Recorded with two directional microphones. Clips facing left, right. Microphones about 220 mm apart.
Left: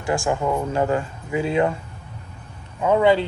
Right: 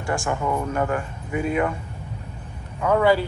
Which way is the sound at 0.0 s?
20° left (ahead or behind).